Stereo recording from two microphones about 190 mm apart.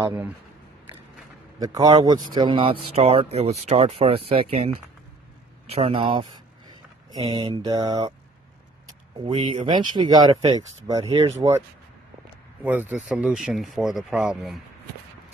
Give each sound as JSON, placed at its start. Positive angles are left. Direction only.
{"t": 1.6, "sound": "speech", "side_deg": -20}
{"t": 5.8, "sound": "speech", "side_deg": -30}
{"t": 6.7, "sound": "a sound", "side_deg": -25}
{"t": 7.3, "sound": "speech", "side_deg": -20}
{"t": 9.2, "sound": "speech", "side_deg": -25}
{"t": 12.6, "sound": "speech", "side_deg": -10}